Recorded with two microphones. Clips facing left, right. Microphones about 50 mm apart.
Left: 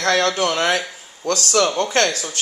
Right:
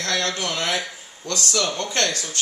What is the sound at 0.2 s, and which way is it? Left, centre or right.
Speech, left.